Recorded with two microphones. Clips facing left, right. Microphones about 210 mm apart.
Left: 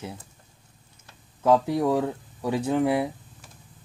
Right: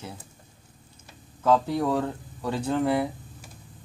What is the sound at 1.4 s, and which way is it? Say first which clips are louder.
Speech: left 2 dB; 10° left (ahead or behind).